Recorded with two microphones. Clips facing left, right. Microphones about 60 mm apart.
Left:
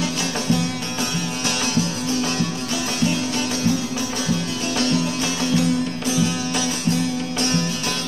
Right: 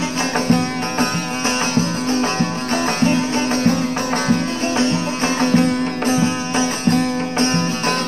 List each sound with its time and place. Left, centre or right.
0.5 s music: right
4.7 s music: right